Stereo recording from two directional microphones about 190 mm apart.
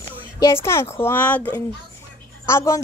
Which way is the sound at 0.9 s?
10° left (ahead or behind).